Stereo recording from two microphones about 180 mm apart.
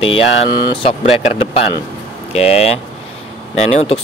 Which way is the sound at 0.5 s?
35° left (ahead or behind).